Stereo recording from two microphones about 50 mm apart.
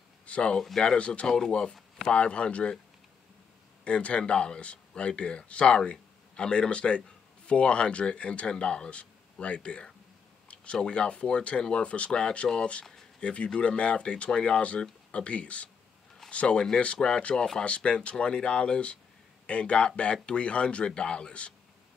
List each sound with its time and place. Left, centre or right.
0.3 s speech: centre
1.2 s speech: centre
3.8 s speech: left
10.5 s a sound: left
10.9 s speech: left